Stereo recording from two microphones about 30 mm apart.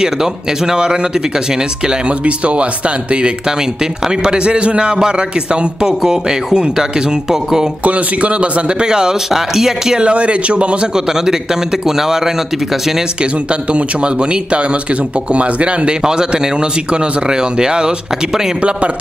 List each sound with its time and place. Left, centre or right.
0.0 s a man's voice: centre
2.0 s a man's voice: right
7.8 s a man's voice: right
8.8 s a man's voice: right
9.3 s speech: centre
9.9 s speech: right
11.1 s speech: centre
13.2 s speech: right
16.0 s a man's voice: right
18.6 s a man's voice: right